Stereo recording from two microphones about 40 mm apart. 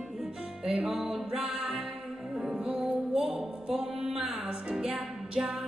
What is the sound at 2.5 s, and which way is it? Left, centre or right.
Music, right.